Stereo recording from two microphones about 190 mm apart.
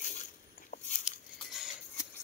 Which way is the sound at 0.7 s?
45° left (ahead or behind).